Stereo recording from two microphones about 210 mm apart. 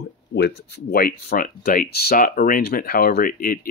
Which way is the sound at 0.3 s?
50° left (ahead or behind).